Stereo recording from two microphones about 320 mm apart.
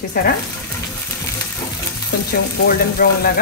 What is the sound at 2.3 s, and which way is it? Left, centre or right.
Speech, left.